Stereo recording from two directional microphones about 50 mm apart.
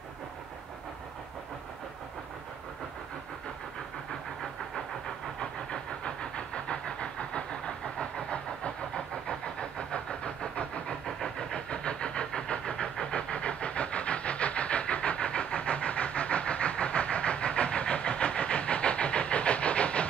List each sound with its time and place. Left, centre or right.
4.4 s vehicle: centre; by 11.0 s left
11.1 s vehicle: centre